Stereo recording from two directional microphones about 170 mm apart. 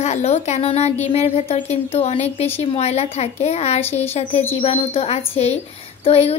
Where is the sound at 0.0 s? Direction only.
40° left (ahead or behind).